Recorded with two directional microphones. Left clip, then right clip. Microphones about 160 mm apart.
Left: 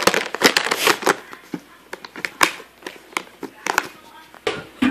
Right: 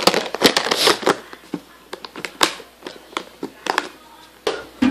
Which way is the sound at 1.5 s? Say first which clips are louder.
Right 2 dB; 15° right (ahead or behind).